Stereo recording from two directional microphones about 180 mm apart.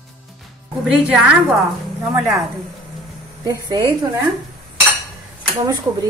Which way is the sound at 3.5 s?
20° right (ahead or behind).